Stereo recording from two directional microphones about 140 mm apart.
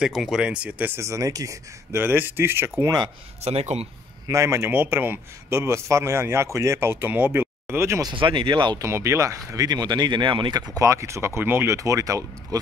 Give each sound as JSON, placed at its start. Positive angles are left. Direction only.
{"t": 0.0, "sound": "a man's voice", "side_deg": -5}
{"t": 2.8, "sound": "speech", "side_deg": -25}
{"t": 3.4, "sound": "speech", "side_deg": -50}
{"t": 4.3, "sound": "a man's voice", "side_deg": -20}
{"t": 8.1, "sound": "speech", "side_deg": -35}
{"t": 8.8, "sound": "speech", "side_deg": -20}
{"t": 10.8, "sound": "speech", "side_deg": -20}